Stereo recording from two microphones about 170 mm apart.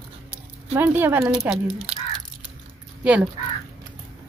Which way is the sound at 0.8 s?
10° right (ahead or behind).